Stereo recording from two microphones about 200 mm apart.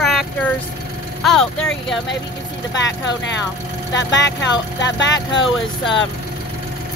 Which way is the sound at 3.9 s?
65° left (ahead or behind).